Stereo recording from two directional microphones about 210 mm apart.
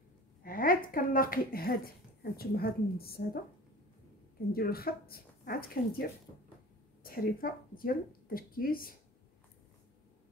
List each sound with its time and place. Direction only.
0.4 s speech: 40° left (ahead or behind)
4.5 s speech: 45° left (ahead or behind)